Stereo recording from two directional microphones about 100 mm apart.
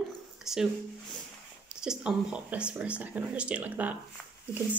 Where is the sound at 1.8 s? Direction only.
10° right (ahead or behind).